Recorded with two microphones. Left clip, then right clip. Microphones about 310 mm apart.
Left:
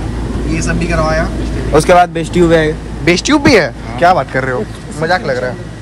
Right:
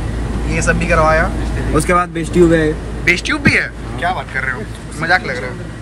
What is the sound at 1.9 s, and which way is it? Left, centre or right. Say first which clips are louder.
Speech: left 7 dB; left.